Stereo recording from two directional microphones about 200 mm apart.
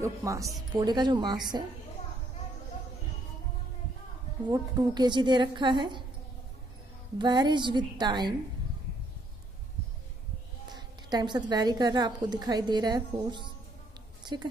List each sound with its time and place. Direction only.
0.0 s a woman's voice: 15° right (ahead or behind)
4.5 s a woman's voice: 20° right (ahead or behind)
7.2 s a woman's voice: 20° right (ahead or behind)
10.7 s a woman's voice: 20° right (ahead or behind)